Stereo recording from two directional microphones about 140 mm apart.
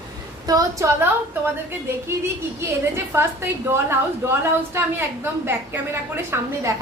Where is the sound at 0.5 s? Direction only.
25° right (ahead or behind).